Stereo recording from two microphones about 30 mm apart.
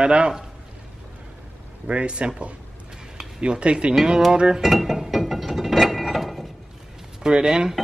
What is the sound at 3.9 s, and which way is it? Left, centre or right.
Speech, right.